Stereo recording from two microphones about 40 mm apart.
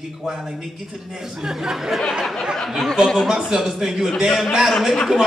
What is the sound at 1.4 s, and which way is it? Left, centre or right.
Speech, centre.